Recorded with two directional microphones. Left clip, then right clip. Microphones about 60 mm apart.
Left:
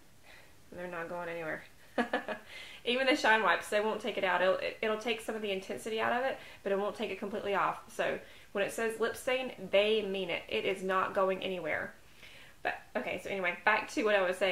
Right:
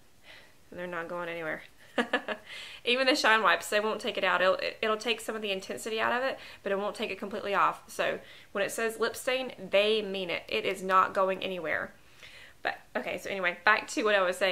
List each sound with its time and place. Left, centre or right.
1.2 s speech: right
2.0 s a sound: right
2.8 s a woman's voice: right